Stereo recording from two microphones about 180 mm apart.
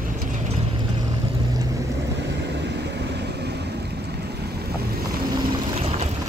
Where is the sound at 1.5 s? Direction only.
20° right (ahead or behind).